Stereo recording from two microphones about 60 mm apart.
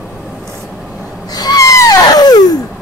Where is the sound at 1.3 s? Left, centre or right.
Left.